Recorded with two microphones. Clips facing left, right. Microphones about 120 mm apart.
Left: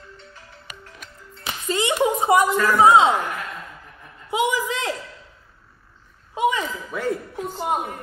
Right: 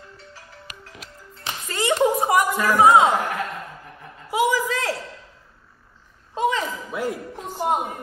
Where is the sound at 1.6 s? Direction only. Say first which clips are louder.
Right 1 dB; 20° left (ahead or behind).